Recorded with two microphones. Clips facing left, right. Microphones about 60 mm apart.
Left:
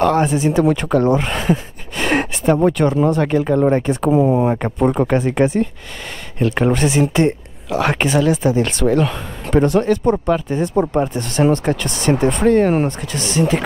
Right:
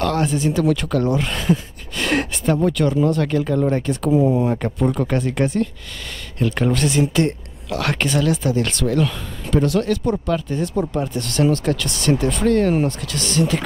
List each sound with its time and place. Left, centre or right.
0.0 s speech: centre
4.1 s speech: left
4.5 s speech: left